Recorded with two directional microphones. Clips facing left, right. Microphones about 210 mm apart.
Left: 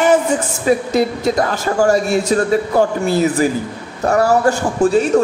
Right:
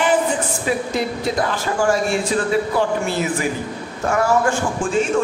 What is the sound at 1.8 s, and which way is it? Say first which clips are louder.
Speech: left 4 dB; 40° left (ahead or behind).